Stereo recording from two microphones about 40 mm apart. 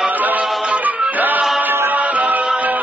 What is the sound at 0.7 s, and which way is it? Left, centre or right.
Music, right.